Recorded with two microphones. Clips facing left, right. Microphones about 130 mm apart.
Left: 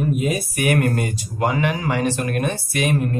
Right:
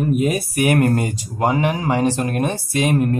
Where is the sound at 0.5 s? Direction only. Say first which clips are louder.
Right 4 dB; 35° right (ahead or behind).